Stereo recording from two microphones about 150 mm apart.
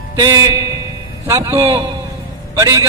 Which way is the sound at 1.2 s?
15° right (ahead or behind).